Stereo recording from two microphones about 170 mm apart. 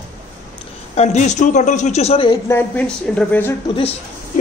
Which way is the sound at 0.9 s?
40° left (ahead or behind).